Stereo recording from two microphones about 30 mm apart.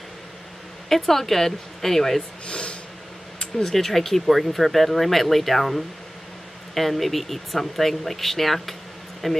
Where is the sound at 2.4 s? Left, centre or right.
Left.